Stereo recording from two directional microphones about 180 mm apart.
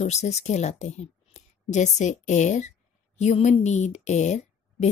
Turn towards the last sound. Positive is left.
turn(degrees=40)  # may be behind; listen again after turning